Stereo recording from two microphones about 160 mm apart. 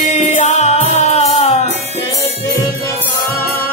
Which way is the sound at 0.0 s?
45° left (ahead or behind).